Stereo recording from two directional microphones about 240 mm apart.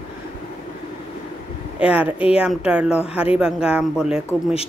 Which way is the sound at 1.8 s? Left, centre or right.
Centre.